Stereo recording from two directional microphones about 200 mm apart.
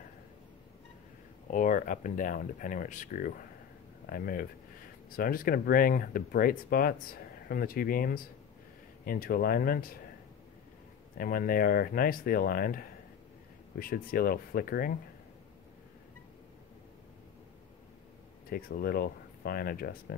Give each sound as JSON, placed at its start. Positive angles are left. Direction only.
{"t": 1.5, "sound": "speech", "side_deg": 40}
{"t": 11.1, "sound": "speech", "side_deg": 45}
{"t": 18.5, "sound": "speech", "side_deg": 50}